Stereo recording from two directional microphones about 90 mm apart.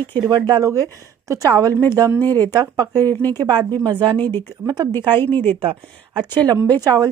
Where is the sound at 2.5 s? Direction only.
45° right (ahead or behind).